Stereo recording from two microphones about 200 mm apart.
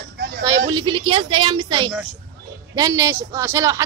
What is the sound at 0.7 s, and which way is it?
A woman's voice, 20° right (ahead or behind).